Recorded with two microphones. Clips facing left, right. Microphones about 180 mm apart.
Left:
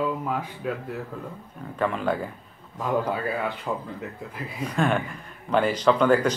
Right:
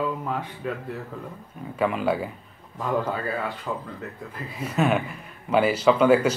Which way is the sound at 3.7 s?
20° left (ahead or behind).